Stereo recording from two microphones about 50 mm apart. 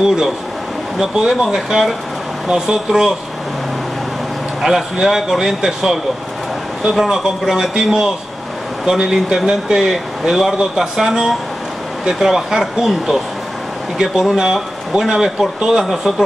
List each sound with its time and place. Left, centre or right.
0.9 s speech: centre
4.6 s speech: centre